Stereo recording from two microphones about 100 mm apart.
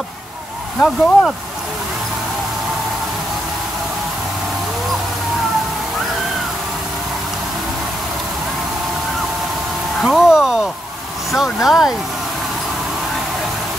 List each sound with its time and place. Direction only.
0.7 s speech: centre (ahead or behind)
10.0 s speech: 5° right (ahead or behind)